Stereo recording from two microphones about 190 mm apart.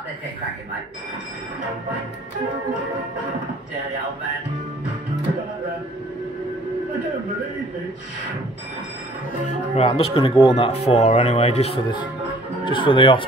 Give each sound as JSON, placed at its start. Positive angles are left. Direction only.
{"t": 9.8, "sound": "speech", "side_deg": 30}